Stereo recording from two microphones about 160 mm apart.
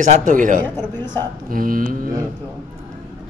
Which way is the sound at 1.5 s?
60° right (ahead or behind).